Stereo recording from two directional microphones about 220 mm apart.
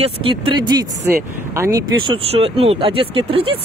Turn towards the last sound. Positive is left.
turn(degrees=-25)  # may be behind; listen again after turning